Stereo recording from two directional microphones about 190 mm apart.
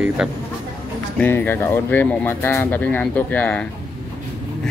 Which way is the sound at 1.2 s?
10° left (ahead or behind).